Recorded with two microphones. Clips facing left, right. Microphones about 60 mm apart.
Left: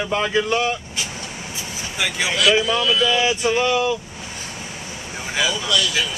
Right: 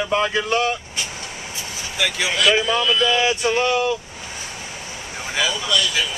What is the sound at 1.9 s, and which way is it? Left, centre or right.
Speech, centre.